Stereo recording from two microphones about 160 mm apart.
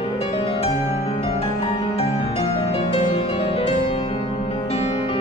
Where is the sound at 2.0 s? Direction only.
35° left (ahead or behind).